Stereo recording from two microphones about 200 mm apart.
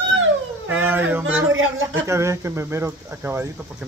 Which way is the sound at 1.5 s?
80° right.